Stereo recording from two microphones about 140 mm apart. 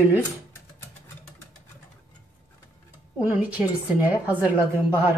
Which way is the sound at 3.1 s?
10° right (ahead or behind).